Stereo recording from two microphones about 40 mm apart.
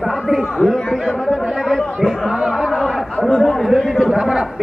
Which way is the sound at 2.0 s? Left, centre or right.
Centre.